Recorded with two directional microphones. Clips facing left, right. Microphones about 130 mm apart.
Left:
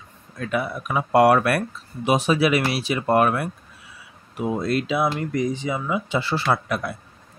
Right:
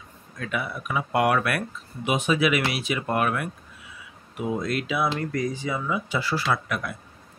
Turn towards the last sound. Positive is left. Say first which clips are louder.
# left 4 dB
turn(degrees=35)  # may be behind; listen again after turning